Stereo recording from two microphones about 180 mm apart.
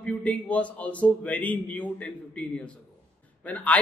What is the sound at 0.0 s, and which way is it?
Speech, 10° left (ahead or behind).